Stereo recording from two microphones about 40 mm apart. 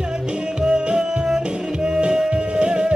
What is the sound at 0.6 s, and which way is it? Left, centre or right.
Music, right.